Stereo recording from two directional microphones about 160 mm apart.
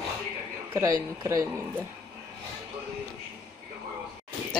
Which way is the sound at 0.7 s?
20° right (ahead or behind).